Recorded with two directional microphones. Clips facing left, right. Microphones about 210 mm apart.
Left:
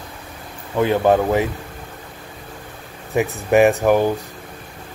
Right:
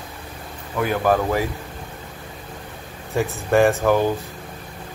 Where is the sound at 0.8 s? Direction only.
25° left (ahead or behind).